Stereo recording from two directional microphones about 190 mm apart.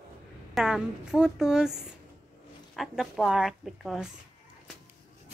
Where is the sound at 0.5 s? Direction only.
5° right (ahead or behind).